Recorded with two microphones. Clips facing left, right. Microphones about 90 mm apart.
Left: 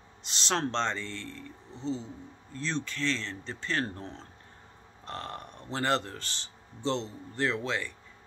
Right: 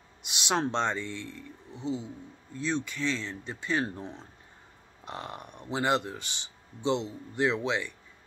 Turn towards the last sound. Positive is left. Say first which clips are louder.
# right 3 dB
turn(degrees=-15)  # may be behind; listen again after turning